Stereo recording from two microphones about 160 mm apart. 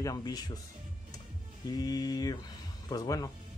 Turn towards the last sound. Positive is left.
turn(degrees=25)  # may be behind; listen again after turning